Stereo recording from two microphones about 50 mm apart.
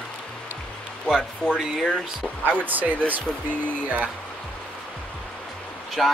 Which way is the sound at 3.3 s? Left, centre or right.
Centre.